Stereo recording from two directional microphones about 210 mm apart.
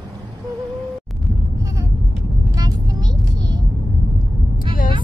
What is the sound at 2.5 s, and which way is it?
Vehicle, 20° right (ahead or behind).